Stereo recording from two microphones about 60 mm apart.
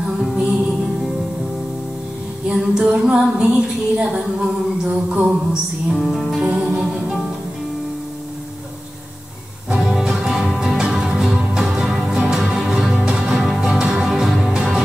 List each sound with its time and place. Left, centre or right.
2.4 s music: centre
3.9 s a sound: centre
6.4 s music: centre
9.7 s music: centre
11.5 s music: centre